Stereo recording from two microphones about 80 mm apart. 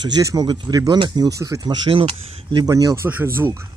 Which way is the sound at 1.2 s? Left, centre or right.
Right.